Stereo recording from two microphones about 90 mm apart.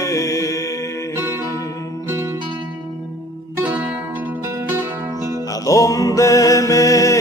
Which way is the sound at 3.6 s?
25° right (ahead or behind).